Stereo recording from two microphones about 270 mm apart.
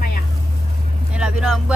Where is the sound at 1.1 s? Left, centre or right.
Centre.